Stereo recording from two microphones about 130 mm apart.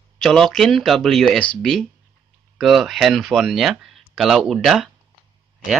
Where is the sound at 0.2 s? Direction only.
5° left (ahead or behind).